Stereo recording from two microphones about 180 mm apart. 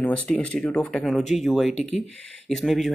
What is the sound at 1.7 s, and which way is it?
Speech, 35° left (ahead or behind).